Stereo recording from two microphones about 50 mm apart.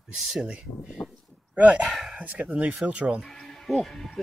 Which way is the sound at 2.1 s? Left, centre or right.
Right.